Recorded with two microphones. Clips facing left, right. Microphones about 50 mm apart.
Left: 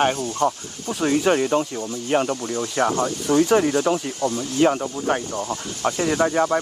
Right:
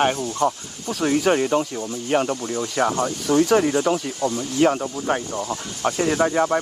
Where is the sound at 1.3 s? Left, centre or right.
Right.